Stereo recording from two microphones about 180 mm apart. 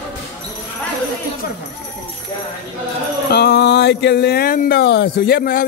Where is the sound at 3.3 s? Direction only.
65° left (ahead or behind).